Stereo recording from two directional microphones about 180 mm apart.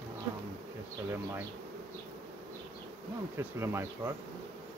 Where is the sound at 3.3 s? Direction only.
15° right (ahead or behind).